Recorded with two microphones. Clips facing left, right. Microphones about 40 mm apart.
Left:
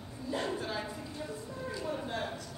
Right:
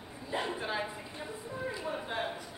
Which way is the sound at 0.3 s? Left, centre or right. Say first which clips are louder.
Even; right.